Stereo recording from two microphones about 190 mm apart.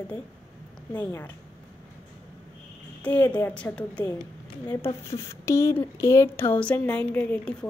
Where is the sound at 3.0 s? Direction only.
10° left (ahead or behind).